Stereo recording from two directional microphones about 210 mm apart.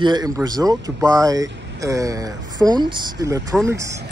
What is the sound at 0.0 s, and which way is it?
Speech, 20° right (ahead or behind).